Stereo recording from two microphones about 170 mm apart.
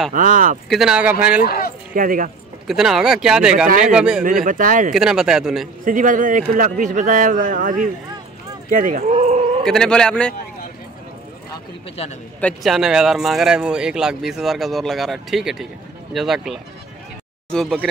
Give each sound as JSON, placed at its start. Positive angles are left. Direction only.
{"t": 0.1, "sound": "speech", "side_deg": -50}
{"t": 0.7, "sound": "speech", "side_deg": -5}
{"t": 1.4, "sound": "speech", "side_deg": 60}
{"t": 2.0, "sound": "speech", "side_deg": -55}
{"t": 2.6, "sound": "speech", "side_deg": 0}
{"t": 4.2, "sound": "speech", "side_deg": -55}
{"t": 4.9, "sound": "speech", "side_deg": -5}
{"t": 5.9, "sound": "speech", "side_deg": -50}
{"t": 9.1, "sound": "a sound", "side_deg": -35}
{"t": 9.7, "sound": "speech", "side_deg": 5}
{"t": 12.0, "sound": "speech", "side_deg": 40}
{"t": 12.4, "sound": "speech", "side_deg": 5}